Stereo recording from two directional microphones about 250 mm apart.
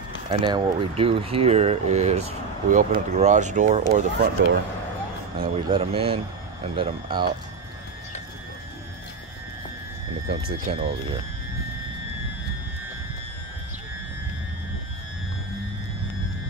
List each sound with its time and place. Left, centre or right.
0.3 s speech: right
5.4 s speech: right
10.2 s speech: right